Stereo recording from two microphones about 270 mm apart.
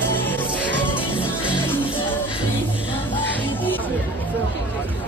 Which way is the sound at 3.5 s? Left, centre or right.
Centre.